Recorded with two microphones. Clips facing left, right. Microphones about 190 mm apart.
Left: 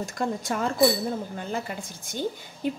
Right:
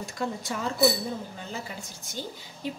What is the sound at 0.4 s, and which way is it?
Speech, 55° left (ahead or behind).